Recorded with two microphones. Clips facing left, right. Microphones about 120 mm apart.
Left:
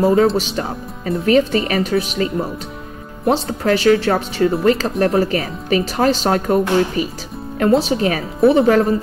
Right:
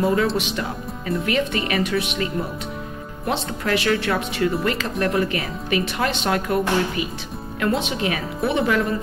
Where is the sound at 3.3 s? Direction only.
35° left (ahead or behind).